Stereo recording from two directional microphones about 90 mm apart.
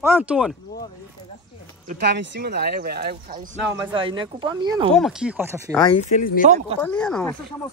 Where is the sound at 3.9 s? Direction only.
70° right (ahead or behind).